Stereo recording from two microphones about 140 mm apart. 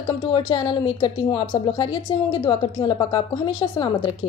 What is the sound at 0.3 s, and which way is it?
A woman's voice, 35° left (ahead or behind).